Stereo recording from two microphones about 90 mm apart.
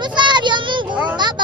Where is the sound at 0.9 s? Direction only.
15° right (ahead or behind).